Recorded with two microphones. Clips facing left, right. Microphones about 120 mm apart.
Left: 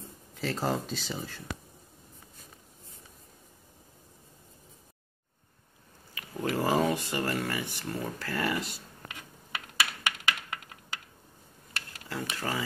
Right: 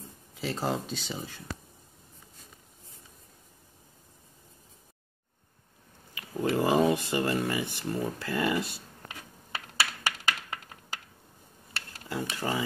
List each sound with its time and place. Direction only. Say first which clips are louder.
0.3 s speech: even; 5° right (ahead or behind)
6.3 s speech: right 2 dB; 20° right (ahead or behind)
9.1 s a sound: right 1 dB; 35° right (ahead or behind)
12.1 s speech: right 2 dB; 20° right (ahead or behind)